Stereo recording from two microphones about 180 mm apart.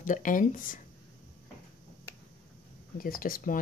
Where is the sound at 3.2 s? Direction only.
50° left (ahead or behind).